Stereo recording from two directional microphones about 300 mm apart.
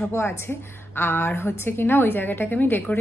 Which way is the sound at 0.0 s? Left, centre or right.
Centre.